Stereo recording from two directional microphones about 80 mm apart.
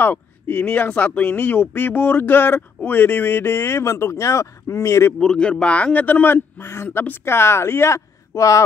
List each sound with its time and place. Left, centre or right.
0.0 s speech: left
5.2 s speech: centre; by 8.6 s left